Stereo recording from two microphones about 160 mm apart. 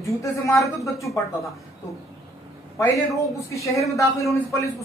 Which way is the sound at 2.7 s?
20° left (ahead or behind).